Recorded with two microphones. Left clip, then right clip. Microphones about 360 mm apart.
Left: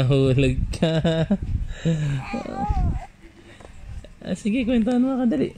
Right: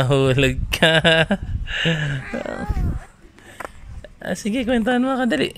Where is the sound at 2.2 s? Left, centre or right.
Right.